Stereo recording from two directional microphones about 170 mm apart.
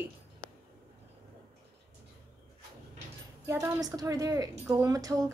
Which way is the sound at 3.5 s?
20° right (ahead or behind).